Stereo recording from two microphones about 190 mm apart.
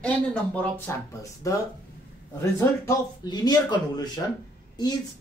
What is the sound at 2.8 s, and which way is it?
A man's voice, 20° left (ahead or behind).